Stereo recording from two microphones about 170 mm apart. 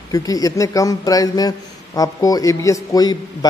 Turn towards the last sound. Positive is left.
turn(degrees=25)  # may be behind; listen again after turning